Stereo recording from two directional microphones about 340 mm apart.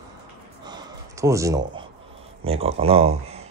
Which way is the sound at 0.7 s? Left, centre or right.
Centre.